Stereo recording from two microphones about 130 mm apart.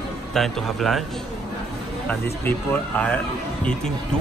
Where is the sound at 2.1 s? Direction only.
10° left (ahead or behind).